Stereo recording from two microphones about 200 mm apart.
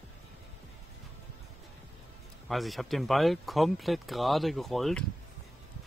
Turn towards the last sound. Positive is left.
turn(degrees=0)  # may be behind; listen again after turning